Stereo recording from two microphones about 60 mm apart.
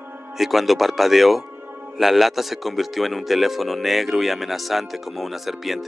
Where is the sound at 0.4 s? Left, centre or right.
Centre.